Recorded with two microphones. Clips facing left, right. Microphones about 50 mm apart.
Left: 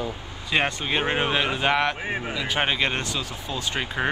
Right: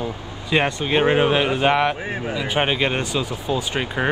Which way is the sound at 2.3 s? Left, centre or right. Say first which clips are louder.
Right 5 dB; centre.